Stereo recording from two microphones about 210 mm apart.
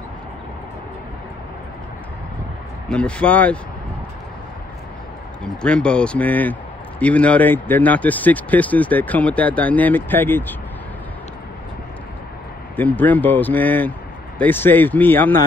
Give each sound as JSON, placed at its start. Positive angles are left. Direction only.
{"t": 2.9, "sound": "speech", "side_deg": 5}
{"t": 5.4, "sound": "speech", "side_deg": 5}
{"t": 12.7, "sound": "speech", "side_deg": 10}